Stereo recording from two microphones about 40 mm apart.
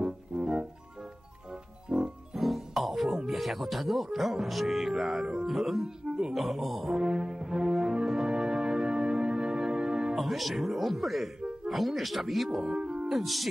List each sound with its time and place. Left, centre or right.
0.0 s music: right
1.9 s music: right
2.3 s music: centre
3.3 s speech: centre
6.0 s music: right
6.3 s speech: centre
6.9 s brass instrument: right
8.1 s music: centre
10.1 s speech: centre
12.6 s music: right
13.1 s speech: centre